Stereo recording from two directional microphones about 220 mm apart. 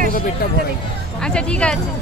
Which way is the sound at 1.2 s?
5° left (ahead or behind).